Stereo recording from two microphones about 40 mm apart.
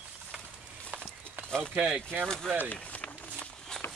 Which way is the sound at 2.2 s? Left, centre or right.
Centre.